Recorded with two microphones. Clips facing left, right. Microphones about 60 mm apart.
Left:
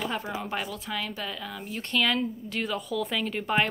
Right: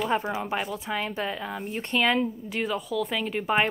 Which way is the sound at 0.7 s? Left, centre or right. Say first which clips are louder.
Right 4 dB; right.